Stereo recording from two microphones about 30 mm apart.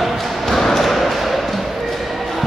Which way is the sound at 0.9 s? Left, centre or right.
Centre.